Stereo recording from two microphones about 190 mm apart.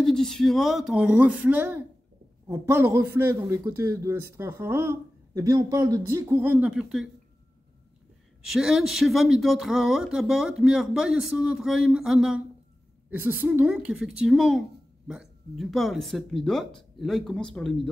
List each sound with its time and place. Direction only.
0.0 s a man's voice: centre (ahead or behind)
8.5 s speech: centre (ahead or behind)